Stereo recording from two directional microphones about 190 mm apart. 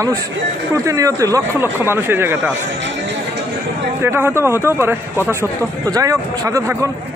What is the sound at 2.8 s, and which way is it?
Chatter, 70° right (ahead or behind).